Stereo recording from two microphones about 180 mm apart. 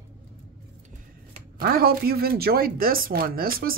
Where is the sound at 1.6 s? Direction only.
55° right (ahead or behind).